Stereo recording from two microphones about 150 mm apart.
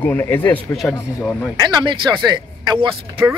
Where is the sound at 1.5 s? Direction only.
30° right (ahead or behind).